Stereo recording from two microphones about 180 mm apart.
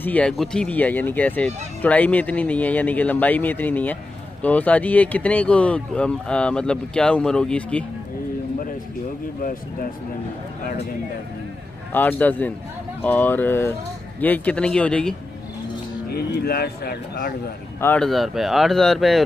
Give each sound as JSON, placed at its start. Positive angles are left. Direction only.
{"t": 0.0, "sound": "speech", "side_deg": 5}
{"t": 9.4, "sound": "speech", "side_deg": 50}
{"t": 11.9, "sound": "speech", "side_deg": 10}
{"t": 16.1, "sound": "speech", "side_deg": 60}
{"t": 17.7, "sound": "speech", "side_deg": 10}